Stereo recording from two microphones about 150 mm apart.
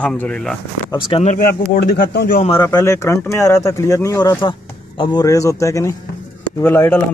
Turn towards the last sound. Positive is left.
turn(degrees=15)  # may be behind; listen again after turning